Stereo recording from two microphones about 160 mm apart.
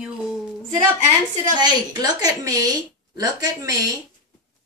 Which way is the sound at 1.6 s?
25° right (ahead or behind).